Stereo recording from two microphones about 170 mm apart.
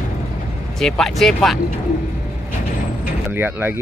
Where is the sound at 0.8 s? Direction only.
Centre (ahead or behind).